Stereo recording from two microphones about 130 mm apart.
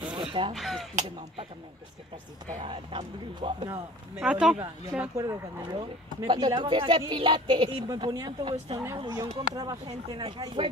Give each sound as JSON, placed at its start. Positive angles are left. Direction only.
{"t": 0.1, "sound": "a sound", "side_deg": -40}
{"t": 0.6, "sound": "speech", "side_deg": 0}
{"t": 2.6, "sound": "a woman's voice", "side_deg": -45}
{"t": 4.2, "sound": "speech", "side_deg": -5}
{"t": 5.1, "sound": "a woman's voice", "side_deg": -25}
{"t": 8.8, "sound": "a woman's voice", "side_deg": -25}